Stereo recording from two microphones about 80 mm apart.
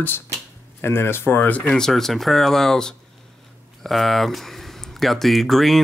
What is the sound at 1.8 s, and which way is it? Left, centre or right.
Speech, centre.